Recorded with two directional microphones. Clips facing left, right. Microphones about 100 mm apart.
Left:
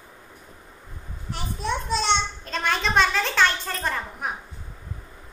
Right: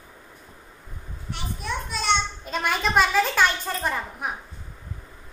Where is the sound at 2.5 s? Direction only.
10° right (ahead or behind).